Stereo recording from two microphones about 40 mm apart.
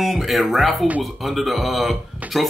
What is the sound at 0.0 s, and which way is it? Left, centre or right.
Speech, centre.